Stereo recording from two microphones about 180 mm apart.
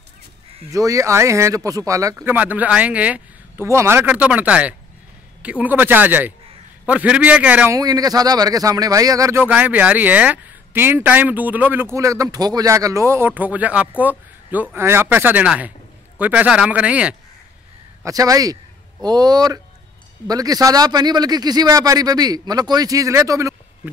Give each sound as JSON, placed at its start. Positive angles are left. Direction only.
{"t": 0.7, "sound": "speech", "side_deg": -15}
{"t": 7.7, "sound": "speech", "side_deg": -20}
{"t": 18.0, "sound": "a man's voice", "side_deg": -20}